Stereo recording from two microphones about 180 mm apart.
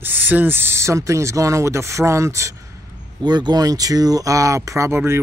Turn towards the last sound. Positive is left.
turn(degrees=-15)  # may be behind; listen again after turning